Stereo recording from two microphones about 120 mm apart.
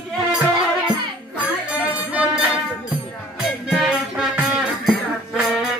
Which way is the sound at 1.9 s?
10° right (ahead or behind).